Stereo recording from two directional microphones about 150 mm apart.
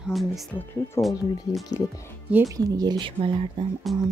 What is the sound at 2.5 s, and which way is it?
Speech, 25° right (ahead or behind).